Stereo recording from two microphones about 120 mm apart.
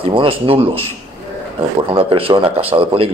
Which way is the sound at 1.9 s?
50° right (ahead or behind).